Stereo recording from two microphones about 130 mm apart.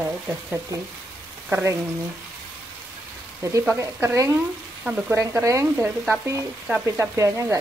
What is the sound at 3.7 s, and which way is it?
Frying, 25° right (ahead or behind).